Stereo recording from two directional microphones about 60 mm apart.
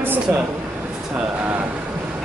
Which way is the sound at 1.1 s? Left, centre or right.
Right.